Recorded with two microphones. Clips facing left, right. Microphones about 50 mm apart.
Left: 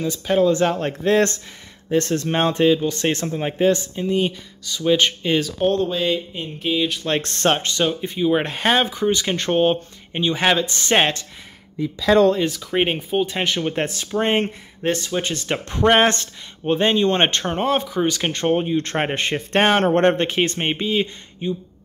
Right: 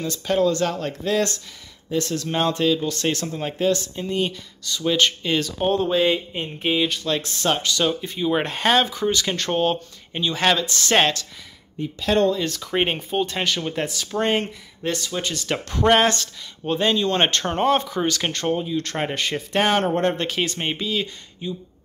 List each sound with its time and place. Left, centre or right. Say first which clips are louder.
0.0 s speech: left 2 dB; centre
3.9 s speech: left 3 dB; centre
5.6 s speech: even; centre
7.2 s speech: left 6 dB; left
7.5 s speech: left 1 dB; left
8.1 s speech: left 3 dB; centre
9.1 s speech: left 3 dB; left
12.4 s speech: left 2 dB; centre
13.7 s speech: left 2 dB; left
17.5 s speech: right 1 dB; centre
18.5 s speech: left 6 dB; left
20.2 s speech: left 4 dB; left